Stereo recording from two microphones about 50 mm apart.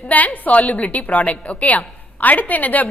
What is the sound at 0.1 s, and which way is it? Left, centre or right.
A woman's voice, left.